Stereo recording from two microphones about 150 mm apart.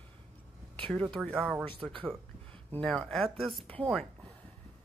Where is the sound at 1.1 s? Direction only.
Centre (ahead or behind).